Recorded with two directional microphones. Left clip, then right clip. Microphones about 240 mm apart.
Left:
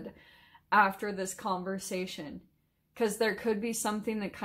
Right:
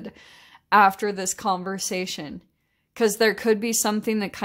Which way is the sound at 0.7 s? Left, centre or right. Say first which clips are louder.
Right 9 dB; right.